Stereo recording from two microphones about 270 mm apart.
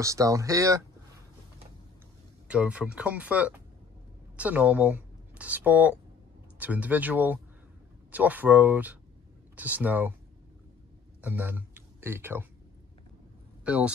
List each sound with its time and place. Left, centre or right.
0.0 s speech: centre
2.4 s speech: centre
11.1 s speech: centre
13.7 s speech: centre